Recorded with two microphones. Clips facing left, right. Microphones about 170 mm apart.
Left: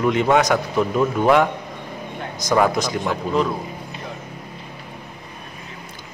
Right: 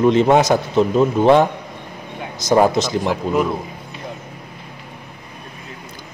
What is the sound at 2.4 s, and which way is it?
Speech, 25° right (ahead or behind).